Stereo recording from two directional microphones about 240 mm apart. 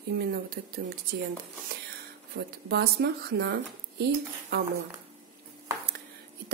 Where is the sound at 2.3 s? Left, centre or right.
Right.